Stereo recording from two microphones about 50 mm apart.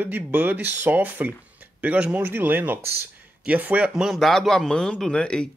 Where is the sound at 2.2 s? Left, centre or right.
Right.